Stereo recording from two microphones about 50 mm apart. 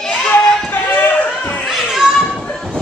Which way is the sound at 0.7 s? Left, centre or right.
Left.